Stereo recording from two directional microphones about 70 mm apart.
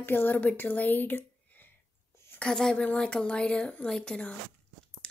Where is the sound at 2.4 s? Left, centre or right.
Centre.